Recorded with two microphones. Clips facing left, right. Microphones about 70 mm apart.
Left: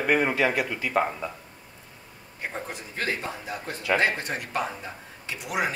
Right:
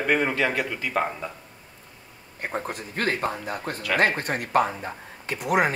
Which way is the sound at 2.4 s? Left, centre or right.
Right.